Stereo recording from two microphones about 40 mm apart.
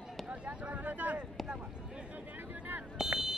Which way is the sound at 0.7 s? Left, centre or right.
Right.